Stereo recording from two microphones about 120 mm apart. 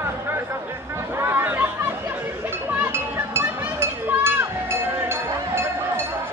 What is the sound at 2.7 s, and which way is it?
Chink, 20° right (ahead or behind).